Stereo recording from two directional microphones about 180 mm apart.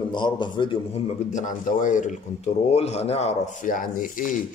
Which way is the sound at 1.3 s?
45° left (ahead or behind).